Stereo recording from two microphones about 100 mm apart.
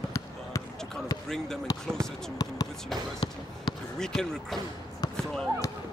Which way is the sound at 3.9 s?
5° left (ahead or behind).